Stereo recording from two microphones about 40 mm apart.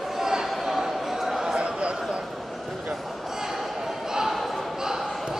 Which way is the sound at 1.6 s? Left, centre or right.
Right.